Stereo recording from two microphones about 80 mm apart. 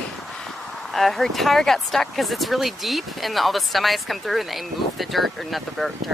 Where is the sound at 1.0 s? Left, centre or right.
Centre.